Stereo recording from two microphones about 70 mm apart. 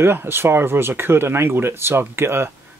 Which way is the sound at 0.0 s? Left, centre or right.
Right.